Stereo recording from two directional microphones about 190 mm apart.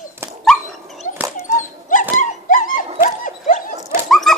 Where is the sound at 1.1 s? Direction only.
40° left (ahead or behind).